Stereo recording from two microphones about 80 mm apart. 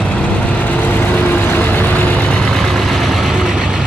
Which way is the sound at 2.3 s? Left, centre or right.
Centre.